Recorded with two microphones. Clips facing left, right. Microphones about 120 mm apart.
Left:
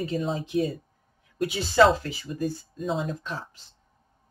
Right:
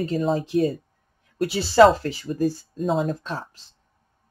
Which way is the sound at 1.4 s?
35° right (ahead or behind).